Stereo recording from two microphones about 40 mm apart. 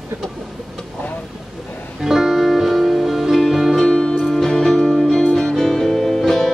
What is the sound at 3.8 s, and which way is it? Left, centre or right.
Music, left.